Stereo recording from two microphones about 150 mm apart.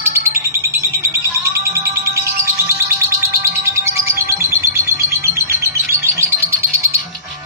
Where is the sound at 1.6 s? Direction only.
20° right (ahead or behind).